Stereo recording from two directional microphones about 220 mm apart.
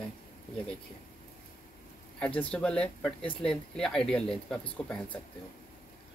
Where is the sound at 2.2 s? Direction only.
5° left (ahead or behind).